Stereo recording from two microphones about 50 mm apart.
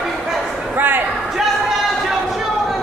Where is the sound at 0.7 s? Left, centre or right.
Right.